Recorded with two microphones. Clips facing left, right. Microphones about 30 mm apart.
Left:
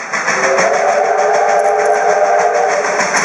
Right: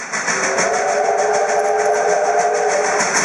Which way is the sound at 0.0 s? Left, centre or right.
Centre.